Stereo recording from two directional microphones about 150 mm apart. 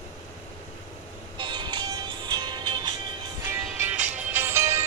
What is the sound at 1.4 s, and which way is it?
Music, 30° right (ahead or behind).